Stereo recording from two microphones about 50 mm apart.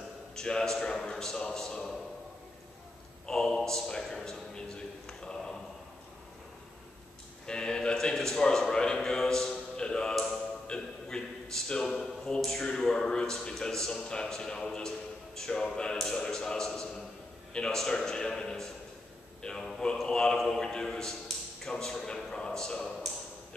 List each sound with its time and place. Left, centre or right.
0.4 s speech: centre
3.3 s a man's voice: centre
7.4 s a man's voice: centre
9.8 s music: centre
10.7 s a sound: centre
12.4 s a man's voice: centre